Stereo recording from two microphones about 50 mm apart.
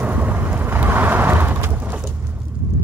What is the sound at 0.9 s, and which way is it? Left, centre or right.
Vehicle, right.